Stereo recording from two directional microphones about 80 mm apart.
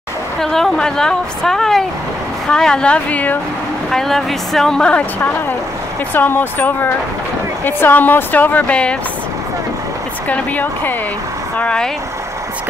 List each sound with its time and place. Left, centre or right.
0.4 s a woman's voice: centre
3.9 s speech: centre
6.1 s speech: left
10.2 s speech: centre
11.5 s speech: centre